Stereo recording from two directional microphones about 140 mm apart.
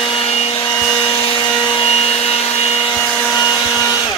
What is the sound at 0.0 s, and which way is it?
Vacuum cleaner, 40° left (ahead or behind).